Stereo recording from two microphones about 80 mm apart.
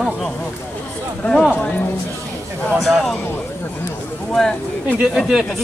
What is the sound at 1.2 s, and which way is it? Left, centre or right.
Speech, left.